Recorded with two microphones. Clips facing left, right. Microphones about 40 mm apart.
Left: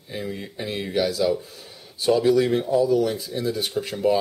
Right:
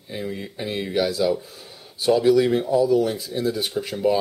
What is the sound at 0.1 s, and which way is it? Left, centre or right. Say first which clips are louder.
Speech: right 1 dB; centre.